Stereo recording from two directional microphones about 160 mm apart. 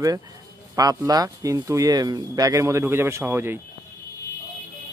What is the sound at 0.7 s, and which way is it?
Speech, 25° right (ahead or behind).